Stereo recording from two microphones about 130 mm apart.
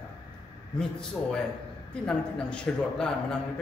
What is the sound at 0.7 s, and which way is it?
A man's voice, 5° left (ahead or behind).